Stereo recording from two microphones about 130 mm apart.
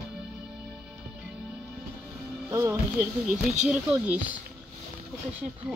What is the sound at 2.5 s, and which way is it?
Speech, 25° right (ahead or behind).